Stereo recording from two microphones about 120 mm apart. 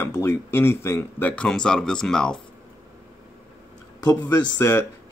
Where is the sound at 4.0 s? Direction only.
25° left (ahead or behind).